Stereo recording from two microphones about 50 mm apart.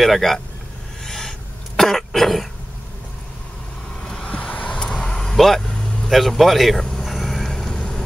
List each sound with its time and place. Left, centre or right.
0.0 s speech: centre
1.0 s a sound: centre
1.8 s cough: centre
4.0 s vehicle: centre
6.0 s vehicle: centre